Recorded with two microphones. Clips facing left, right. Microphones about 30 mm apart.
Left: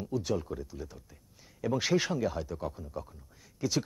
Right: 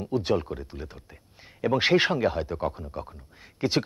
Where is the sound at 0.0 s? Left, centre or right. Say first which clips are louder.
Right 7 dB; right.